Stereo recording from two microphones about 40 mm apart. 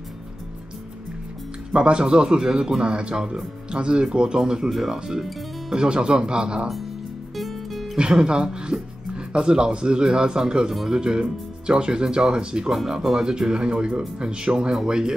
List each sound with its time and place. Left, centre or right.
1.7 s speech: right
4.6 s speech: centre
4.9 s speech: centre
7.3 s music: centre
8.0 s speech: right